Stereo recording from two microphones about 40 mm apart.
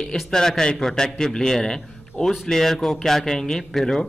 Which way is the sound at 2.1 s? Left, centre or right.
Left.